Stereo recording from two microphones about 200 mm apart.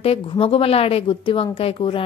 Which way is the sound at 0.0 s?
30° left (ahead or behind).